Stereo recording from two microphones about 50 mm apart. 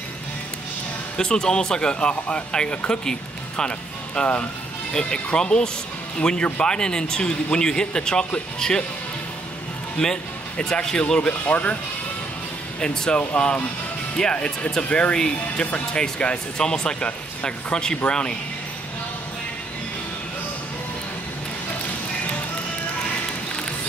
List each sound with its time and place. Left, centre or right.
1.1 s speech: centre
10.0 s speech: centre
12.8 s speech: centre
15.6 s speech: left
16.0 s speech: centre